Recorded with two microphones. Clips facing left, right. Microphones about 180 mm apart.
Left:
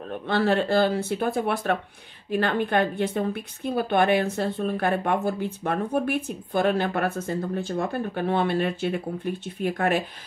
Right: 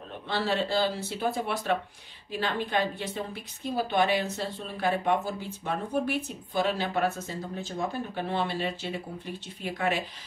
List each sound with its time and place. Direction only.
0.3 s a woman's voice: 55° left (ahead or behind)